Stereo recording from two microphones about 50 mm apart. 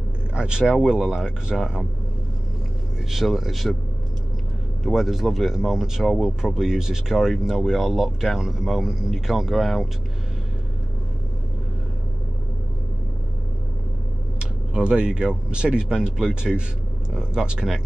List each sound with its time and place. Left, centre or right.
0.3 s speech: centre
3.1 s speech: centre
4.8 s speech: centre
6.0 s speech: centre
6.4 s speech: centre
14.4 s speech: centre